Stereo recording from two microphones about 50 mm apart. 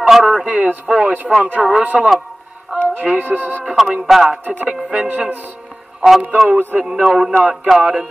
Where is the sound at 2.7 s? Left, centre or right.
Right.